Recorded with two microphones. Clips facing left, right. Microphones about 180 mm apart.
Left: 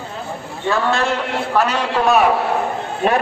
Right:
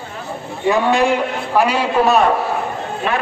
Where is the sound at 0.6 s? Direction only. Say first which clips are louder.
Right 4 dB; 15° right (ahead or behind).